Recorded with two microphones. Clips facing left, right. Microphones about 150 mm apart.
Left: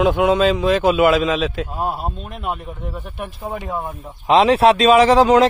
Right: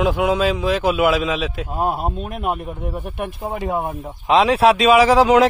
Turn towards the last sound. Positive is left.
turn(degrees=-5)  # may be behind; listen again after turning